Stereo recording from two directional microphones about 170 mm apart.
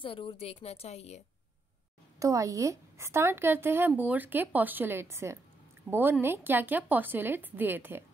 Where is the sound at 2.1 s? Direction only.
20° right (ahead or behind).